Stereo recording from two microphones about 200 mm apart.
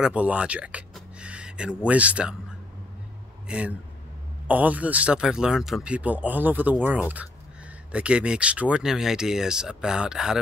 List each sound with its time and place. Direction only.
0.0 s a sound: 5° right (ahead or behind)
1.9 s speech: 5° right (ahead or behind)
3.4 s speech: 5° right (ahead or behind)